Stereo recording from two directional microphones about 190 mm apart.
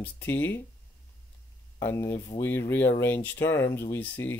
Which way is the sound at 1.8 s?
15° left (ahead or behind).